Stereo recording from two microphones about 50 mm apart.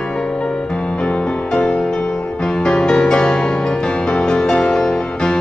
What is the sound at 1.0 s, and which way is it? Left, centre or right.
Music, centre.